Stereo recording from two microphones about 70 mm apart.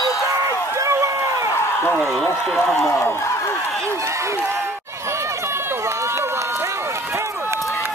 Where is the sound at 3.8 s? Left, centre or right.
Right.